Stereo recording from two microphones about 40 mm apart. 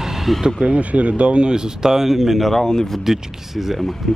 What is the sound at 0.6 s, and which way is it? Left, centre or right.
Speech, right.